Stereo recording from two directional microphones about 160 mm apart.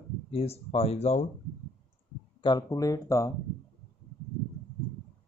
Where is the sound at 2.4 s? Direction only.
25° left (ahead or behind).